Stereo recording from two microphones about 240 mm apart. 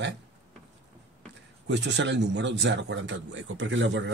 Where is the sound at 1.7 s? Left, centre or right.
Right.